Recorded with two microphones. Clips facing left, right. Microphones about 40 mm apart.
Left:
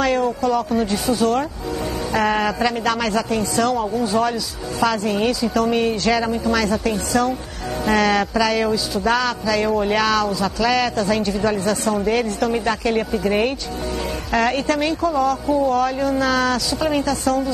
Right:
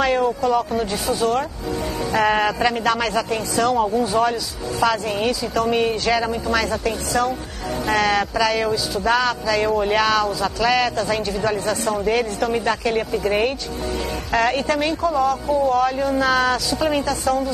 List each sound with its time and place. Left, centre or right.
0.0 s speech: centre